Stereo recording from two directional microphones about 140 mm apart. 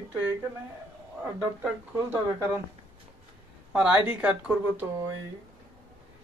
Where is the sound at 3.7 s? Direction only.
10° right (ahead or behind).